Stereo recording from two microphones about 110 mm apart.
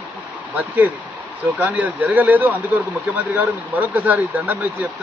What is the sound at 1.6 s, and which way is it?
Speech, 15° right (ahead or behind).